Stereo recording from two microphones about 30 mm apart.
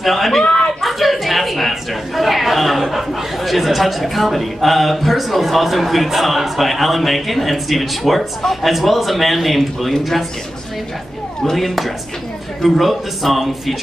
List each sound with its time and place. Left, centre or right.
0.0 s a woman's voice: centre
0.4 s speech: left
0.7 s a woman's voice: centre
11.4 s a woman's voice: centre